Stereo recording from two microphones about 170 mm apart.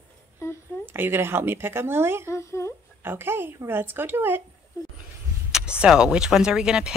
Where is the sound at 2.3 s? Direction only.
15° left (ahead or behind).